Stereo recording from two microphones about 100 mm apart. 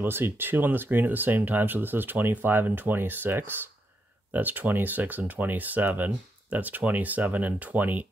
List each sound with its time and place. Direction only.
0.0 s speech: 20° right (ahead or behind)